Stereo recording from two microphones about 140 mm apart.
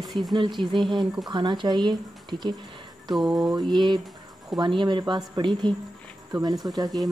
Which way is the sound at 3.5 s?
35° right (ahead or behind).